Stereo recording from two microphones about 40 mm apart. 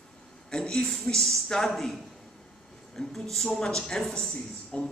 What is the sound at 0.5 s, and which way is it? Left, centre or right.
A man's voice, centre.